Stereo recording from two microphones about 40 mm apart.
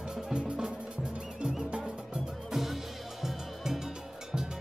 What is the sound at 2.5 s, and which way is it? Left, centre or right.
Music, centre.